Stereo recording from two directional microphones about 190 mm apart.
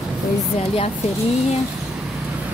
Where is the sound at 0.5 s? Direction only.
35° left (ahead or behind).